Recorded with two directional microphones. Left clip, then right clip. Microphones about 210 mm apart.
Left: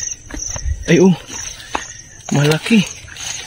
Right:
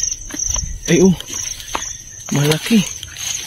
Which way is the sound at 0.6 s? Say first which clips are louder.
Left 2 dB; 20° left (ahead or behind).